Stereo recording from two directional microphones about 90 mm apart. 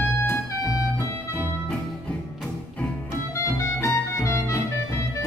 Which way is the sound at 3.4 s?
30° left (ahead or behind).